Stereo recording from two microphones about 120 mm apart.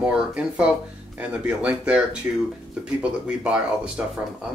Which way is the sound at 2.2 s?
20° right (ahead or behind).